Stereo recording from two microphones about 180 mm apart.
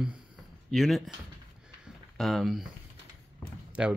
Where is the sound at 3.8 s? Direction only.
5° right (ahead or behind).